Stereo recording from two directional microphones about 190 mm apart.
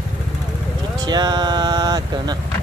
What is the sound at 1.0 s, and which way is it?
Speech, 20° right (ahead or behind).